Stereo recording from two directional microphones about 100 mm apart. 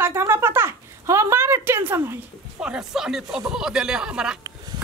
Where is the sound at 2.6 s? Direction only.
5° right (ahead or behind).